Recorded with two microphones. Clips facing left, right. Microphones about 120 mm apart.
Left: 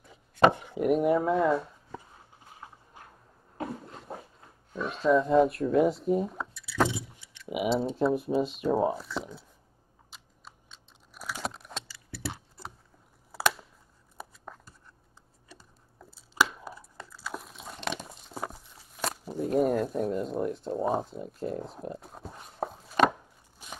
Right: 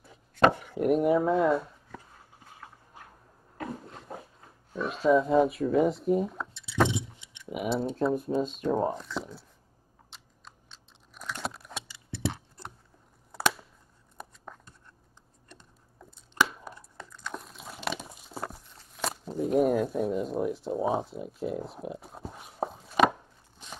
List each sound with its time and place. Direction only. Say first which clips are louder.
0.0 s chopping: left 1 dB; centre (ahead or behind)
0.7 s speech: right 1 dB; centre (ahead or behind)
4.7 s speech: right 1 dB; centre (ahead or behind)
6.5 s a sound: left 2 dB; 25° right (ahead or behind)
6.9 s tick-tock: right 3 dB; 20° right (ahead or behind)
7.4 s speech: left 2 dB; 5° left (ahead or behind)
10.1 s computer keyboard: left 1 dB; 5° left (ahead or behind)
11.7 s keys jangling: right 1 dB; 20° right (ahead or behind)
13.3 s a sound: even; 5° left (ahead or behind)